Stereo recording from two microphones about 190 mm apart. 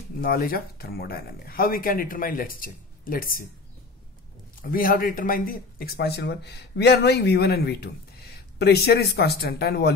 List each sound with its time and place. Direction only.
0.2 s speech: 50° left (ahead or behind)
4.6 s speech: 50° left (ahead or behind)